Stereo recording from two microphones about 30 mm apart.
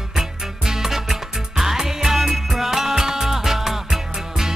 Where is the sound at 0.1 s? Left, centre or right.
Centre.